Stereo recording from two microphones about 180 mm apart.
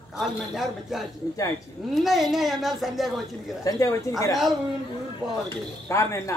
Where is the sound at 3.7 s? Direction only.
20° left (ahead or behind).